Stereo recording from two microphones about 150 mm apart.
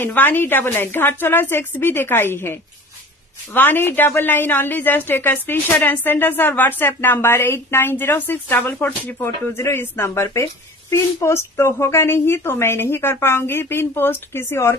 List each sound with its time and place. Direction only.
0.0 s a woman's voice: 15° left (ahead or behind)